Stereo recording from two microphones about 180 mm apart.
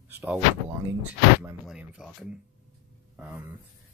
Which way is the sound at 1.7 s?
5° right (ahead or behind).